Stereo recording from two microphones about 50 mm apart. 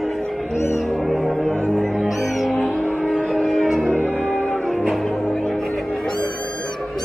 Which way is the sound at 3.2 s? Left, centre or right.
Centre.